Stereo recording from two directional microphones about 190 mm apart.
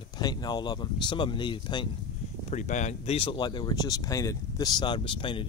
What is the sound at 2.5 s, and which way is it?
Speech, 40° left (ahead or behind).